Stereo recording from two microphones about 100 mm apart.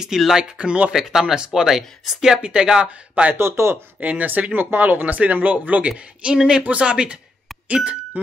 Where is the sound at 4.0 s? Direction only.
15° right (ahead or behind).